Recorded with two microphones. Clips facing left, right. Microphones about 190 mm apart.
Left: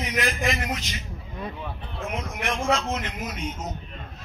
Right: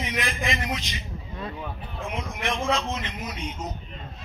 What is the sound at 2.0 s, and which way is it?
A man's voice, 45° left (ahead or behind).